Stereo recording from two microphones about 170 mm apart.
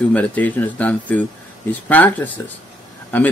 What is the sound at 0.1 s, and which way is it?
Speech, 10° left (ahead or behind).